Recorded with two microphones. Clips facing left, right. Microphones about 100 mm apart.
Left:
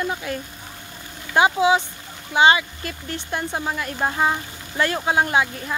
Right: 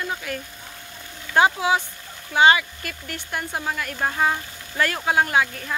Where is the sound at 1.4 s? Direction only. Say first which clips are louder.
Left 2 dB; 20° left (ahead or behind).